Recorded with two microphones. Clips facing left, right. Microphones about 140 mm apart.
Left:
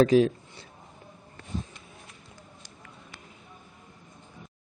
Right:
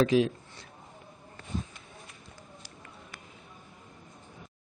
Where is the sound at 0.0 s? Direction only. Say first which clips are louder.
Left 4 dB; 40° left (ahead or behind).